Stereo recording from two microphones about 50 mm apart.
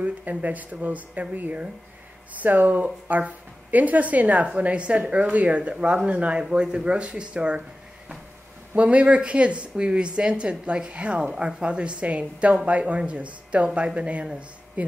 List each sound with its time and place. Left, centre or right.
0.0 s speech: right
8.7 s speech: right